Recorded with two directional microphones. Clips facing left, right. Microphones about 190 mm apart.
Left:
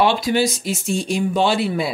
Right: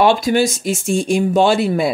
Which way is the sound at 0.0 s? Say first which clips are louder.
Right 3 dB; 45° right (ahead or behind).